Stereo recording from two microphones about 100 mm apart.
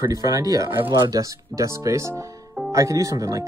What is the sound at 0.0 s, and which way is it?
Speech, 40° right (ahead or behind).